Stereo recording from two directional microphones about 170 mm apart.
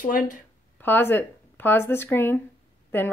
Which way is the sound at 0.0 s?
50° left (ahead or behind).